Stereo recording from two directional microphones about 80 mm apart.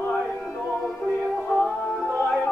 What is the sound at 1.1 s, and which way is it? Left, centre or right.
Music, centre.